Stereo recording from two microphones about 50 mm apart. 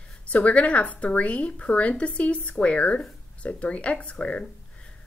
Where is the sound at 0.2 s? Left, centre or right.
Left.